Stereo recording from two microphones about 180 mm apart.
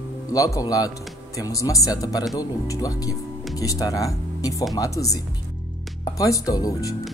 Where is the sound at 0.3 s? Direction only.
20° left (ahead or behind).